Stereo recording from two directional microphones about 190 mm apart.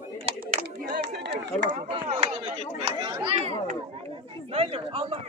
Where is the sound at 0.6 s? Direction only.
60° right (ahead or behind).